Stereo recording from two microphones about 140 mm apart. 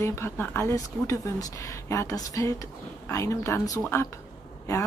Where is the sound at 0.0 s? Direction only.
20° left (ahead or behind).